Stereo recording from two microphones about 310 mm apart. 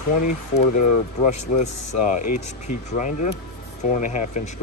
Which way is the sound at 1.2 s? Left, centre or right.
Left.